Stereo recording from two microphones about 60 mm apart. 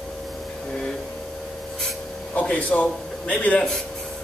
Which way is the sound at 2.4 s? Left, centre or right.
Left.